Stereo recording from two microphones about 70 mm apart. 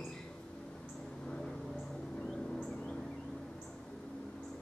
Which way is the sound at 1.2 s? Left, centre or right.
Centre.